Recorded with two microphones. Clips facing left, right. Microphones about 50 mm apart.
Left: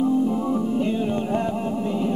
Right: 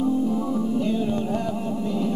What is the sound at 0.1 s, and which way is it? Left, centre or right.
Music, centre.